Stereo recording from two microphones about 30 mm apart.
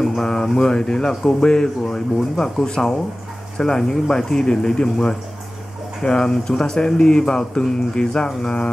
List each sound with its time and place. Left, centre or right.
0.2 s speech: centre
6.0 s speech: left